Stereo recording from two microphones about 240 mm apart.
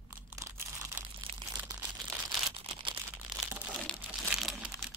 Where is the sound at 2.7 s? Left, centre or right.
Centre.